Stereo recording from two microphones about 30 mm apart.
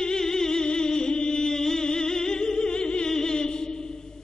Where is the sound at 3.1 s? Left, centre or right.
Left.